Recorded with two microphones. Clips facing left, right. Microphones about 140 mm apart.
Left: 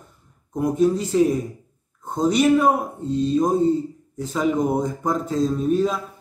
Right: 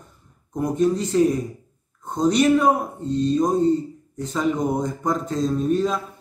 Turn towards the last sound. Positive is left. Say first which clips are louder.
# even
turn(degrees=5)  # may be behind; listen again after turning